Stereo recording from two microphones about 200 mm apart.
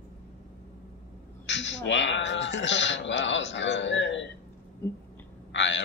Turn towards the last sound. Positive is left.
turn(degrees=65)  # may be behind; listen again after turning